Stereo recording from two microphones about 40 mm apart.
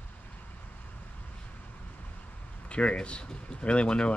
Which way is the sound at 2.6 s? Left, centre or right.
Left.